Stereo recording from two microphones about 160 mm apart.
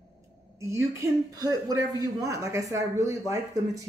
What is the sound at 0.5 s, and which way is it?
A man's voice, 20° right (ahead or behind).